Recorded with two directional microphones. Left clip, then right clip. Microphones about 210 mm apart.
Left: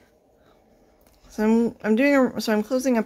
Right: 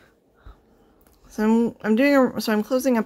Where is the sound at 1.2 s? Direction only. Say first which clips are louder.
Even; 10° right (ahead or behind).